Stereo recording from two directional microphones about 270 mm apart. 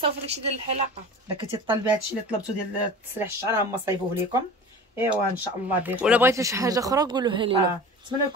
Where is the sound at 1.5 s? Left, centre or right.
Centre.